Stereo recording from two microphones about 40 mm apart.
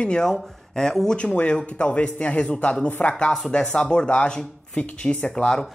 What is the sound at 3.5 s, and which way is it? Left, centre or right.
Speech, left.